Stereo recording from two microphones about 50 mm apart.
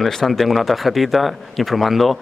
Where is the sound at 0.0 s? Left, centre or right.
Centre.